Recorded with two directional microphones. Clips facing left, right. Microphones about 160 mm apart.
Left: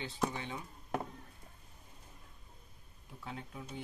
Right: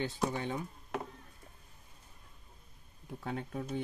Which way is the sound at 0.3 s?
45° right (ahead or behind).